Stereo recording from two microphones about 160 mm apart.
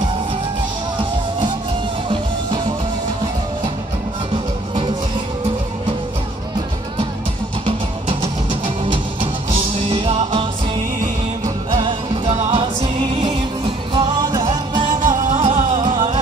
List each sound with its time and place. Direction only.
2.0 s music: 30° right (ahead or behind)
4.3 s music: 35° right (ahead or behind)
7.6 s music: 30° right (ahead or behind)
11.4 s music: 30° right (ahead or behind)